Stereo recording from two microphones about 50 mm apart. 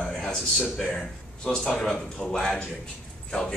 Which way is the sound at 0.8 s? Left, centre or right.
Centre.